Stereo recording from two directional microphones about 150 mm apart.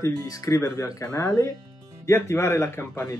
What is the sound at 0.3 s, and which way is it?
Speech, 20° left (ahead or behind).